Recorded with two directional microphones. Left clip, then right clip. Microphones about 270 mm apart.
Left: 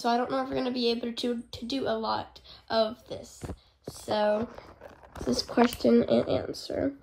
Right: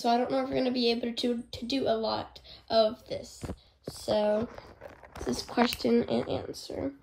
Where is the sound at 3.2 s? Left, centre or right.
Centre.